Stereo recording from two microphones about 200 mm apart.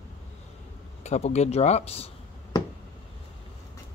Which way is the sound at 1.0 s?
35° left (ahead or behind).